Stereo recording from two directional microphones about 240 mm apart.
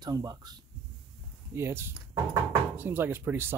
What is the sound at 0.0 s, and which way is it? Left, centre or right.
Speech, centre.